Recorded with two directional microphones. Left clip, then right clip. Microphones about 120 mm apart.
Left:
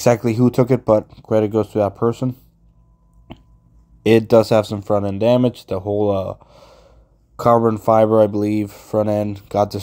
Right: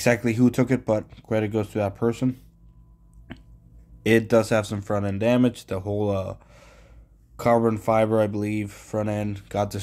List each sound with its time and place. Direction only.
0.0 s speech: 35° left (ahead or behind)
4.0 s speech: 35° left (ahead or behind)
6.4 s sigh: 30° left (ahead or behind)
7.6 s speech: 30° left (ahead or behind)